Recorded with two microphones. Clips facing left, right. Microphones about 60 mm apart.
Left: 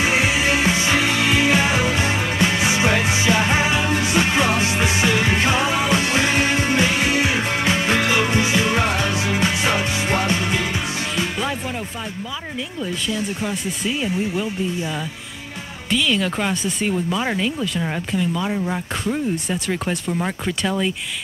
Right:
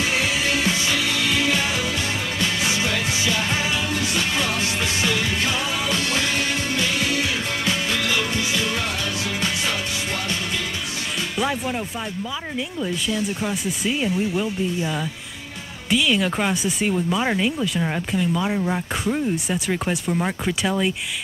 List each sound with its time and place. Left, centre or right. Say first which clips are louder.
0.0 s music: left 4 dB; left
13.4 s speech: even; centre
15.9 s speech: even; centre